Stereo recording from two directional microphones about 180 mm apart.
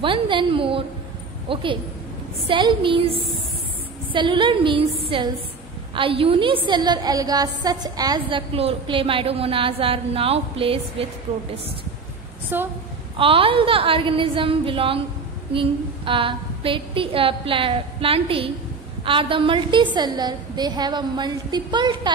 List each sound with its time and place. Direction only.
0.0 s a woman's voice: 30° right (ahead or behind)
12.5 s a woman's voice: 10° right (ahead or behind)
13.2 s a woman's voice: 30° right (ahead or behind)